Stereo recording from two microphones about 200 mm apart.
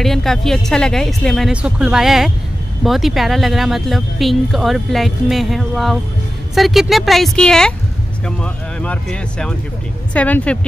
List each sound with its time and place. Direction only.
0.0 s speech: centre (ahead or behind)